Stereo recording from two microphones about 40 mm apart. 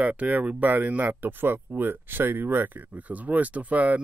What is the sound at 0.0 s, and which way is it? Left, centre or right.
Speech, right.